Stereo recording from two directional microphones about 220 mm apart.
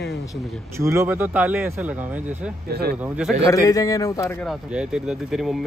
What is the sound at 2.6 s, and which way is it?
Speech, 45° right (ahead or behind).